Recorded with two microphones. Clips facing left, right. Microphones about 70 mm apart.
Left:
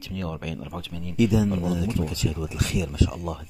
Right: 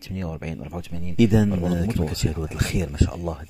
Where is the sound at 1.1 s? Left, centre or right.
Right.